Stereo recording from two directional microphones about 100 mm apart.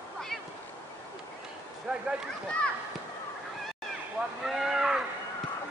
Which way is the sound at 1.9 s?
5° right (ahead or behind).